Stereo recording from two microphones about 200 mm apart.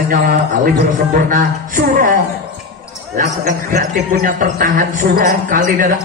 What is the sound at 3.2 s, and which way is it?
A man's voice, 45° right (ahead or behind).